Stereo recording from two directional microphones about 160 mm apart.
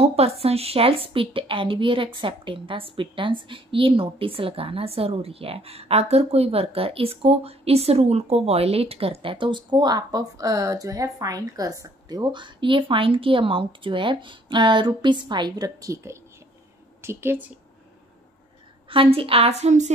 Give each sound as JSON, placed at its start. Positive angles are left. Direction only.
{"t": 0.0, "sound": "a woman's voice", "side_deg": -40}
{"t": 18.9, "sound": "a woman's voice", "side_deg": -35}